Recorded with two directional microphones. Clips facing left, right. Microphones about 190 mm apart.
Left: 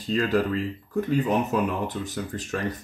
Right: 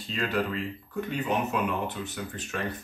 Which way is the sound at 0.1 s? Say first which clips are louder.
Left 6 dB; 40° left (ahead or behind).